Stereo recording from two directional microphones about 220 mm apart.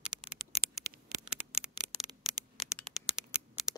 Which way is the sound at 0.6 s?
45° right (ahead or behind).